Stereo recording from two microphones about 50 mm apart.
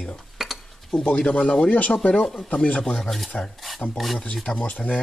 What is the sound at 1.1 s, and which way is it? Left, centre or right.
Speech, centre.